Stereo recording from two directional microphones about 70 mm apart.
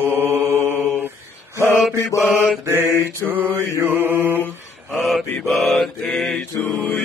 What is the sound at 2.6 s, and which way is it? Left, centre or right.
Mantra, right.